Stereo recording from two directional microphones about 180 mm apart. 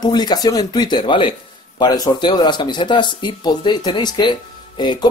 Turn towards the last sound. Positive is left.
turn(degrees=25)  # may be behind; listen again after turning